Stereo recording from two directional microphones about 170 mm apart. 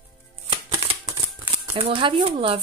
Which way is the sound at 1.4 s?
30° right (ahead or behind).